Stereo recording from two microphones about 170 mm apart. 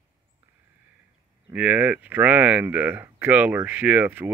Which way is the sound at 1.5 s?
10° right (ahead or behind).